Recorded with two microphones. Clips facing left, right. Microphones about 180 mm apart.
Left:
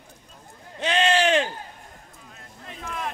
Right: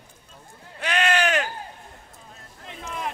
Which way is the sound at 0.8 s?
30° left (ahead or behind).